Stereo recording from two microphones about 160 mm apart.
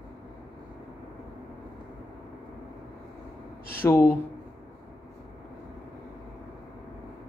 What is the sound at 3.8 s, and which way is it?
Speech, 15° left (ahead or behind).